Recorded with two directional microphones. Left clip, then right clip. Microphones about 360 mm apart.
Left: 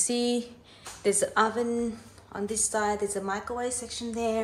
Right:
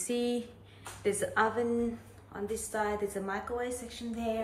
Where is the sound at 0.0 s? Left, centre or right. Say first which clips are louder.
Left 5 dB; centre.